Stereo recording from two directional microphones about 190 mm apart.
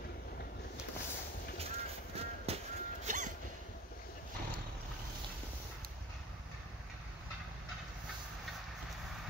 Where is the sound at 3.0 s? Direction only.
40° right (ahead or behind).